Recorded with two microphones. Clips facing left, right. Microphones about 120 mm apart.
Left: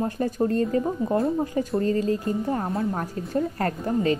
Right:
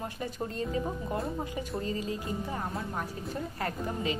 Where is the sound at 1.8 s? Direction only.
50° left (ahead or behind).